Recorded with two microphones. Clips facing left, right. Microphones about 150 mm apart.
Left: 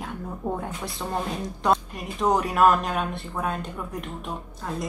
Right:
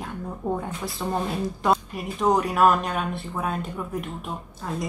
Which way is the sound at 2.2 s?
Centre (ahead or behind).